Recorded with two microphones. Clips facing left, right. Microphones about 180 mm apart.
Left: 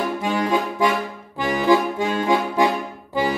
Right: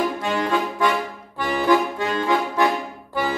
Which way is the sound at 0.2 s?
15° left (ahead or behind).